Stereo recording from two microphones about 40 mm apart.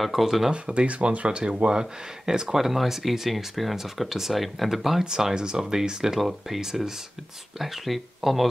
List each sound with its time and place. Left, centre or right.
0.0 s speech: centre
0.5 s speech: right; by 8.5 s centre